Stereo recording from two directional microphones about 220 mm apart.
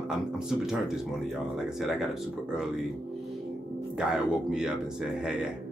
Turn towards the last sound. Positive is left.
turn(degrees=-5)  # may be behind; listen again after turning